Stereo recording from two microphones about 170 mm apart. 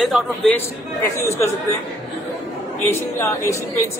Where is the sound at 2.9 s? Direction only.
15° left (ahead or behind).